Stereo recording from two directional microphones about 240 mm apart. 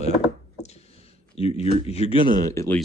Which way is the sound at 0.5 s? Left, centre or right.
Left.